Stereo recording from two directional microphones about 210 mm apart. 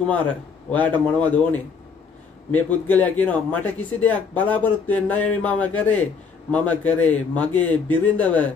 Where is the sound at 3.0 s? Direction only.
10° left (ahead or behind).